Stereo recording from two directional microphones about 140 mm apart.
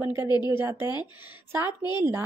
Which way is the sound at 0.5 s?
20° right (ahead or behind).